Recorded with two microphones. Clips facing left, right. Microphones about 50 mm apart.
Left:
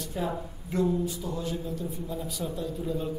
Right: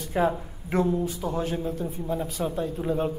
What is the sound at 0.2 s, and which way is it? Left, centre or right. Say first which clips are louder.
A man's voice: right 8 dB; right.